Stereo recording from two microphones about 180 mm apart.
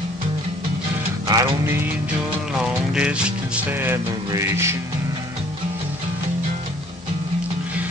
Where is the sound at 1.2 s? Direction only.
20° right (ahead or behind).